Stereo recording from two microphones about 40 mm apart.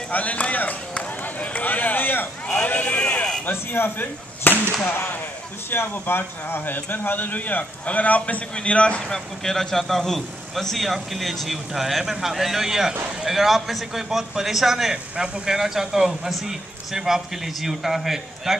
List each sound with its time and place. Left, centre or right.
0.1 s speech: left
2.4 s a sound: left
3.7 s a man's voice: left
8.5 s speech: left
9.1 s a man's voice: centre